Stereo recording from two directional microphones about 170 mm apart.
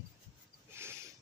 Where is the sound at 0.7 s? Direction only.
15° right (ahead or behind).